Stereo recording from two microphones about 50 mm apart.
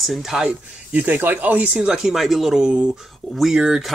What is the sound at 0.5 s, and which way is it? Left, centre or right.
Speech, right.